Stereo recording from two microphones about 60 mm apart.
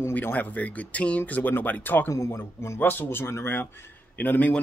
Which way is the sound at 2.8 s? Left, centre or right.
Left.